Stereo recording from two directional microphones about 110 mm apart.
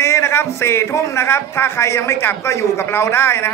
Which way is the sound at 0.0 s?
25° left (ahead or behind).